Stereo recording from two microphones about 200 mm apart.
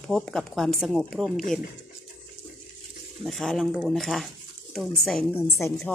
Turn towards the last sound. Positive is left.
turn(degrees=0)  # may be behind; listen again after turning